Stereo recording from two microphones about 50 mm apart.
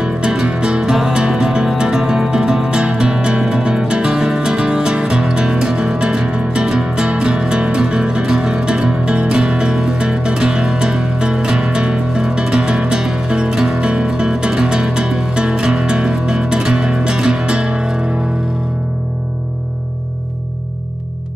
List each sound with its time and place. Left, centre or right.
0.0 s music: centre